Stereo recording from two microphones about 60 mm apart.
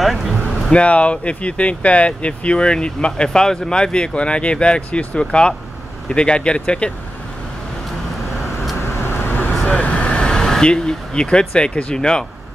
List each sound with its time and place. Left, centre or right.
0.0 s speech: centre
0.7 s speech: left
9.7 s speech: left